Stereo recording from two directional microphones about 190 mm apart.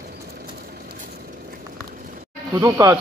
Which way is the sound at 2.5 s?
20° right (ahead or behind).